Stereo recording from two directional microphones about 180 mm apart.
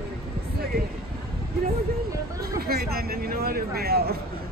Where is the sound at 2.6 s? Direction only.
60° right (ahead or behind).